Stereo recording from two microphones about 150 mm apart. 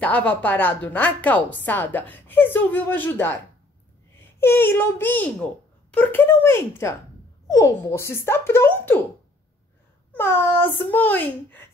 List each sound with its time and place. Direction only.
0.0 s a woman's voice: 10° left (ahead or behind)
4.4 s a woman's voice: 15° left (ahead or behind)
10.1 s a woman's voice: 15° left (ahead or behind)